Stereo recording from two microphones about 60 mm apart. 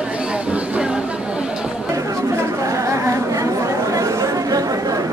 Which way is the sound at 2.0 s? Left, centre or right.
Right.